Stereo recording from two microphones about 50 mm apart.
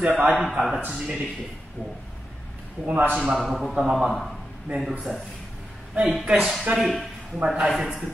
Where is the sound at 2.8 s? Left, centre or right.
Right.